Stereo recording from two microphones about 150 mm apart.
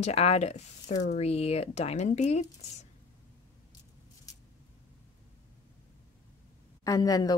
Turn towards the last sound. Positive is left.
turn(degrees=25)  # may be behind; listen again after turning